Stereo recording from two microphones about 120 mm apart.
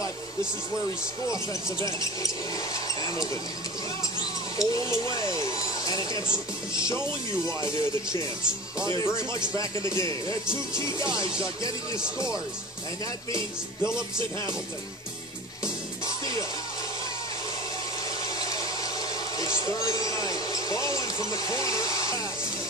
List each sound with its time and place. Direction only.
1.2 s speech: 25° left (ahead or behind)
4.6 s speech: 30° left (ahead or behind)
18.2 s a sound: 30° left (ahead or behind)